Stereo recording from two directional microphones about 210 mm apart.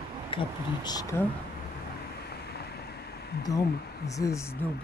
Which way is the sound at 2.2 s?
50° left (ahead or behind).